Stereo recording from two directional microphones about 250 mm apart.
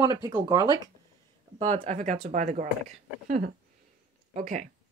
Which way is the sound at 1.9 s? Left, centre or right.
Right.